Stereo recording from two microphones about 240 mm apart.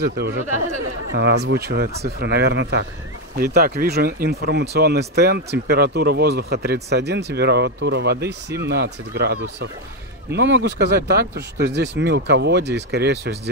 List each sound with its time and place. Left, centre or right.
0.0 s speech: right
0.6 s speech: right